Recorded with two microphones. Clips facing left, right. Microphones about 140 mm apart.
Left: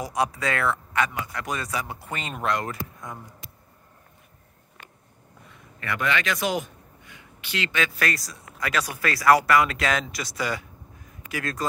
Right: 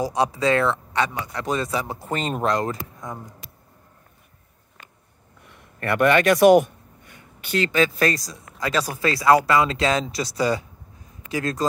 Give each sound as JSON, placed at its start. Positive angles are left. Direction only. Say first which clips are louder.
{"t": 0.0, "sound": "speech", "louder": "right 5 dB", "side_deg": -30}
{"t": 2.0, "sound": "speech", "louder": "right 7 dB", "side_deg": -40}
{"t": 5.8, "sound": "a man's voice", "louder": "right 9 dB", "side_deg": -55}
{"t": 7.5, "sound": "speech", "louder": "right 7 dB", "side_deg": -35}